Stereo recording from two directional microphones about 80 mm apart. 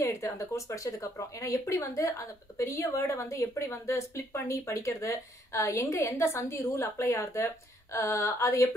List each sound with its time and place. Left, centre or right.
0.0 s speech: left